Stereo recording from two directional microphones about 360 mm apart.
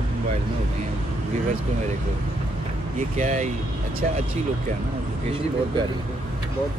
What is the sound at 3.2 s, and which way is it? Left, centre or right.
Speech, centre.